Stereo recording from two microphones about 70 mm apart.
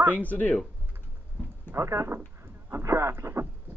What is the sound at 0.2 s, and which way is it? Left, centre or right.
Speech, left.